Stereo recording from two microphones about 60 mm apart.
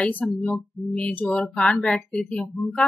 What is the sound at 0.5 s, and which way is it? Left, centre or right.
A woman's voice, left.